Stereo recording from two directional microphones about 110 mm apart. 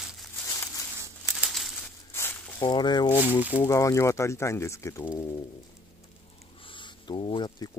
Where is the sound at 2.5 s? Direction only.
40° left (ahead or behind).